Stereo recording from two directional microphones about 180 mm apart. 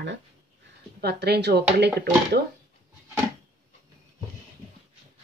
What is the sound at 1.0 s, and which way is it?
Speech, 65° right (ahead or behind).